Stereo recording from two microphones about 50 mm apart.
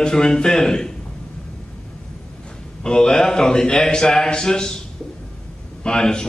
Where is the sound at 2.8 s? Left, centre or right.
Centre.